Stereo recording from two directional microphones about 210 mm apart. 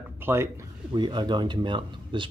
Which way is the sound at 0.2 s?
10° right (ahead or behind).